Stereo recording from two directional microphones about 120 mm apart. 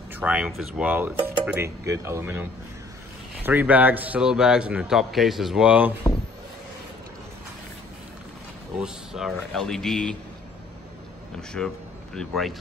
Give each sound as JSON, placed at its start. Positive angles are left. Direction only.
{"t": 0.1, "sound": "a man's voice", "side_deg": -10}
{"t": 3.4, "sound": "a man's voice", "side_deg": -15}
{"t": 8.8, "sound": "speech", "side_deg": -5}
{"t": 11.5, "sound": "a man's voice", "side_deg": 5}